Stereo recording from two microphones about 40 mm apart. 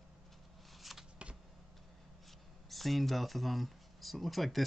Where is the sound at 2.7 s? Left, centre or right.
Centre.